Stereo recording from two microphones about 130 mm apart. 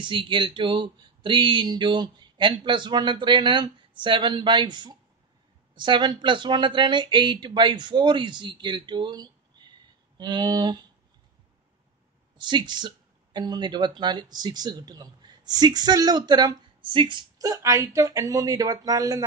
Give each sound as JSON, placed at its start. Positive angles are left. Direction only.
{"t": 0.0, "sound": "speech", "side_deg": -40}
{"t": 12.4, "sound": "speech", "side_deg": -35}